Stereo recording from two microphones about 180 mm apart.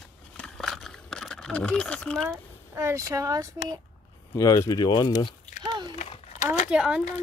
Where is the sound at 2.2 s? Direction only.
15° right (ahead or behind).